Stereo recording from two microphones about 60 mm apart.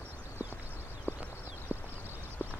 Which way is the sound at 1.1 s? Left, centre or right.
Left.